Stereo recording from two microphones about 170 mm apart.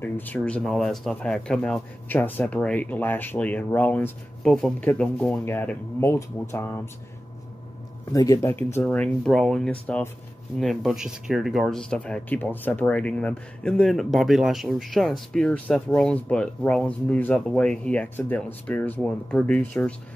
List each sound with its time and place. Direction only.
0.0 s speech: 10° left (ahead or behind)
8.1 s speech: 20° left (ahead or behind)
8.8 s speech: 5° left (ahead or behind)